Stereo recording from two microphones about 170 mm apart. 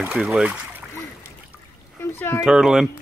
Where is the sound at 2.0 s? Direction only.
15° left (ahead or behind).